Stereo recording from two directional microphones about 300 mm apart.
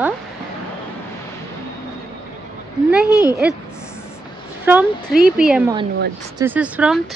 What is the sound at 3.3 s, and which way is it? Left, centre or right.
Speech, centre.